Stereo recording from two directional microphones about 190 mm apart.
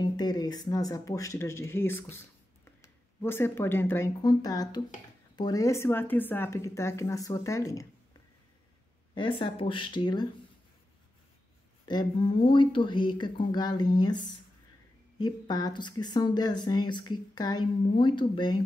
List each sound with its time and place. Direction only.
0.0 s speech: 20° left (ahead or behind)
9.1 s speech: 25° left (ahead or behind)
11.9 s speech: 25° left (ahead or behind)